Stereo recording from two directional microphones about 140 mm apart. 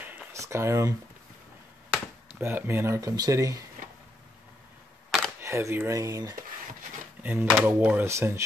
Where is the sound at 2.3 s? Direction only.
15° right (ahead or behind).